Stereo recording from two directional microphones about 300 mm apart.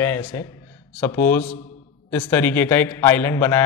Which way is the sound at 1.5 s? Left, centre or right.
Left.